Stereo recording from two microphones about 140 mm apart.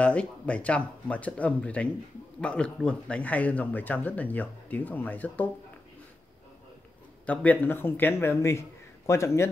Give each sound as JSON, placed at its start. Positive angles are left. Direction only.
{"t": 0.0, "sound": "speech", "side_deg": 10}
{"t": 7.3, "sound": "speech", "side_deg": 10}